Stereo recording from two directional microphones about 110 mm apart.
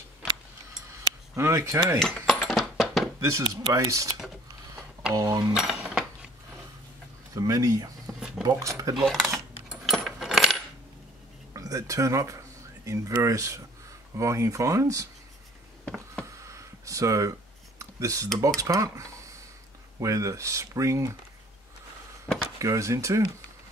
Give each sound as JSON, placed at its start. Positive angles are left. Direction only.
{"t": 1.3, "sound": "speech", "side_deg": -25}
{"t": 2.0, "sound": "dishes", "side_deg": 5}
{"t": 3.2, "sound": "speech", "side_deg": -25}
{"t": 5.1, "sound": "speech", "side_deg": -35}
{"t": 5.5, "sound": "cutlery", "side_deg": -5}
{"t": 7.3, "sound": "speech", "side_deg": -30}
{"t": 8.9, "sound": "speech", "side_deg": 0}
{"t": 9.9, "sound": "keys jangling", "side_deg": 0}
{"t": 11.5, "sound": "speech", "side_deg": -30}
{"t": 16.4, "sound": "a sound", "side_deg": -30}
{"t": 18.6, "sound": "speech", "side_deg": -30}
{"t": 22.6, "sound": "speech", "side_deg": -30}